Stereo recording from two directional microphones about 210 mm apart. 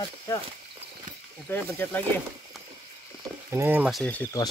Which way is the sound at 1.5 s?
10° left (ahead or behind).